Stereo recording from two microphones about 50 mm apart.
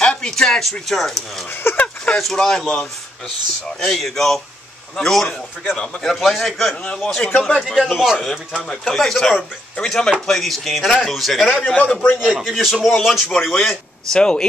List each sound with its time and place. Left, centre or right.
0.0 s a sound: centre
0.7 s a man's voice: centre
1.6 s speech: left
2.3 s speech: centre
3.8 s a man's voice: centre
6.8 s a man's voice: centre
7.6 s a man's voice: centre
11.6 s a man's voice: left
12.2 s a man's voice: centre
14.1 s a man's voice: centre